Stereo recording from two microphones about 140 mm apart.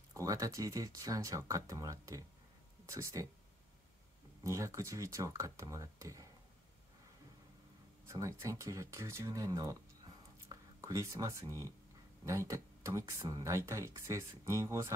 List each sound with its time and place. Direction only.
0.1 s speech: 25° right (ahead or behind)
4.4 s speech: 20° right (ahead or behind)
8.1 s speech: 20° right (ahead or behind)